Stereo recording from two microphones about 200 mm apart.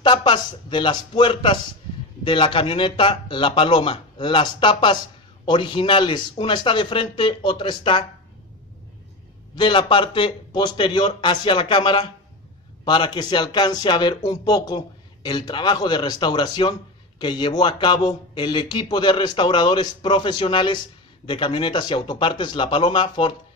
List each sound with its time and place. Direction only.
0.0 s speech: 25° left (ahead or behind)
9.6 s speech: 25° left (ahead or behind)